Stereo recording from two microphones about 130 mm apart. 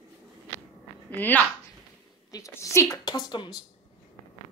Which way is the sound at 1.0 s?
15° left (ahead or behind).